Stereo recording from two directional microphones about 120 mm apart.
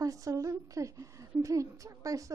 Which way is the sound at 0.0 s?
30° right (ahead or behind).